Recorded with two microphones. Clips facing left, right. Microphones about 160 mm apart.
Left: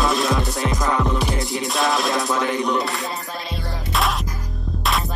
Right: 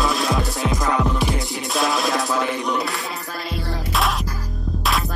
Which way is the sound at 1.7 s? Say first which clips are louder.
Even; centre (ahead or behind).